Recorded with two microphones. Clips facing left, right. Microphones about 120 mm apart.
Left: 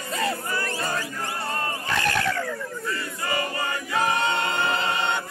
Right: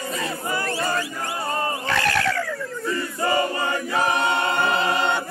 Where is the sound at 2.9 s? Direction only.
25° right (ahead or behind).